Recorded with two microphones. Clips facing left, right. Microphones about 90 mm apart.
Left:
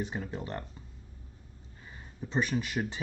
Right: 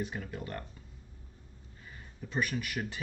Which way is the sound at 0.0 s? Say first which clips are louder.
Left 2 dB; 25° left (ahead or behind).